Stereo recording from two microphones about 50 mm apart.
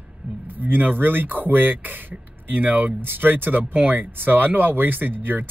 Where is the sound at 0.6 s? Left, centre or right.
Right.